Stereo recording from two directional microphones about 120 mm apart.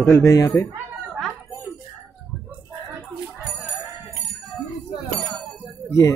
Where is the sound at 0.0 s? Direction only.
25° left (ahead or behind).